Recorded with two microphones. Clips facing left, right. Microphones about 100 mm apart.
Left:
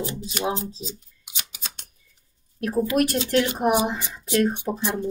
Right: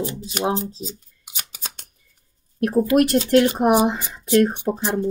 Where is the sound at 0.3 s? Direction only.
45° right (ahead or behind).